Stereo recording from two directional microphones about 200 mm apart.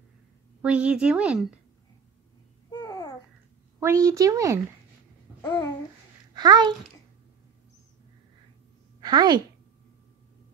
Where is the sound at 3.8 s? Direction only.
15° right (ahead or behind).